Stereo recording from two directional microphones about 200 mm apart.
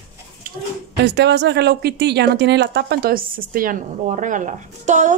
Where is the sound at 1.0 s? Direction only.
55° right (ahead or behind).